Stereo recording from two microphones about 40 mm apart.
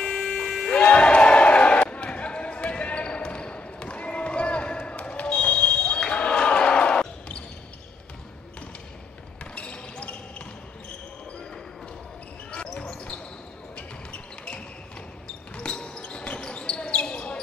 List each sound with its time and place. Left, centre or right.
0.0 s music: centre
0.7 s basketball bounce: left
9.6 s basketball bounce: left
13.7 s basketball bounce: left